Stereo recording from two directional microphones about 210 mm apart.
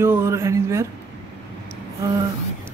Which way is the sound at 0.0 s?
10° right (ahead or behind).